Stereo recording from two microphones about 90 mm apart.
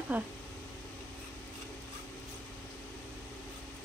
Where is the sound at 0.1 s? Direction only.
20° right (ahead or behind).